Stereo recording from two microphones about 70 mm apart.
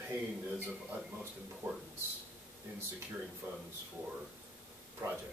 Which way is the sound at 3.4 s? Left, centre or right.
Right.